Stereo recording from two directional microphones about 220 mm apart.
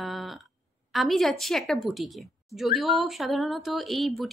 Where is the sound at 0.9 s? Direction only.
Centre (ahead or behind).